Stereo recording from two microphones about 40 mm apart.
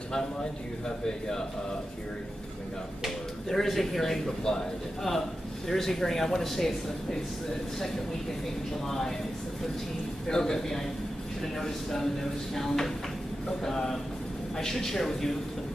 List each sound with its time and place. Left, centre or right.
0.1 s a man's voice: centre
3.4 s a man's voice: centre
8.8 s a man's voice: centre
10.2 s a man's voice: centre